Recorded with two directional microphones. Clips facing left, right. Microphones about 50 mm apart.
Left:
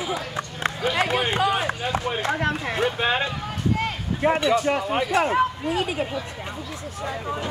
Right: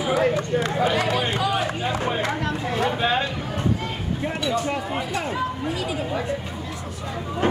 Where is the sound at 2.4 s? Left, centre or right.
Left.